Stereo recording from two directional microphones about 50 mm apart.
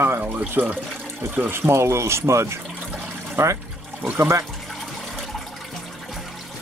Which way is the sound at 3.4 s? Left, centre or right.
Right.